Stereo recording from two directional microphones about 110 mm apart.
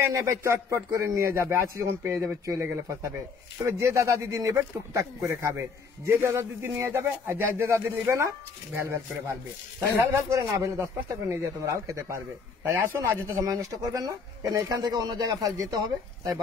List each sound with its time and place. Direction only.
0.0 s speech: 30° right (ahead or behind)
12.9 s speech: 30° right (ahead or behind)